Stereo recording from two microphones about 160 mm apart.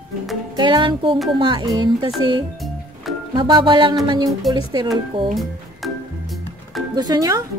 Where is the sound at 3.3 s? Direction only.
30° right (ahead or behind).